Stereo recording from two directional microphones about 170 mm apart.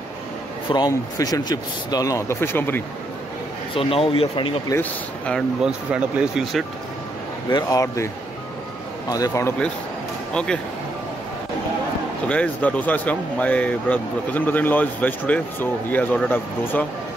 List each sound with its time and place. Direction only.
0.7 s speech: 25° left (ahead or behind)
3.7 s speech: 35° left (ahead or behind)
4.6 s speech: 15° left (ahead or behind)
5.3 s speech: 5° right (ahead or behind)
7.4 s speech: 20° left (ahead or behind)
9.1 s speech: 20° left (ahead or behind)
10.3 s speech: 5° left (ahead or behind)
12.3 s speech: 10° left (ahead or behind)